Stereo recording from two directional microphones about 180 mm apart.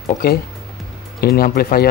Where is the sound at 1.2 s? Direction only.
55° left (ahead or behind).